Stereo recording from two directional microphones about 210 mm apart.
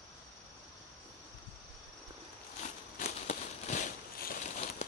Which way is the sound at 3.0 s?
35° left (ahead or behind).